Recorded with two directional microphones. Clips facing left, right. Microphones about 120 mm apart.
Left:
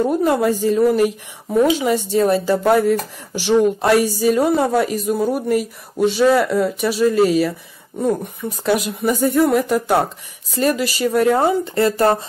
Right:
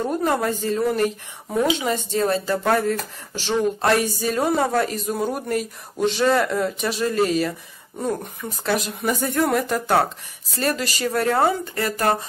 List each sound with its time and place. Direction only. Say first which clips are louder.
0.0 s speech: left 5 dB; 5° left (ahead or behind)
8.6 s speech: left 5 dB; 10° left (ahead or behind)
11.7 s speech: left 6 dB; 30° left (ahead or behind)